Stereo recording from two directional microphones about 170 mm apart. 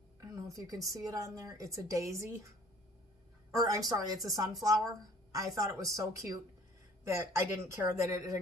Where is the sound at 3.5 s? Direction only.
20° right (ahead or behind).